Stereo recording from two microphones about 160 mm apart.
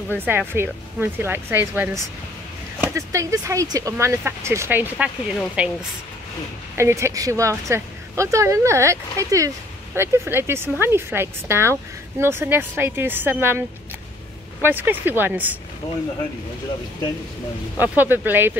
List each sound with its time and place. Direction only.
0.2 s speech: 10° right (ahead or behind)
6.8 s speech: 15° right (ahead or behind)
17.7 s speech: 10° right (ahead or behind)